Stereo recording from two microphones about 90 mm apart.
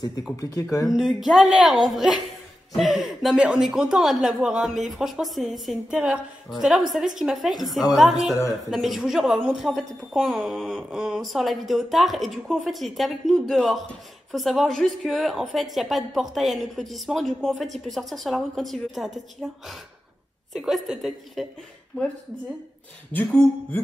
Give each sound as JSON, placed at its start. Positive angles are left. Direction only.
{"t": 0.4, "sound": "speech", "side_deg": 35}
{"t": 0.8, "sound": "a woman's voice", "side_deg": 0}
{"t": 23.1, "sound": "a sound", "side_deg": 20}